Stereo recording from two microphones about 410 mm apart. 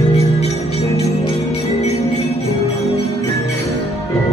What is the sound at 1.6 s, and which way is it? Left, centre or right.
Jingle bell, centre.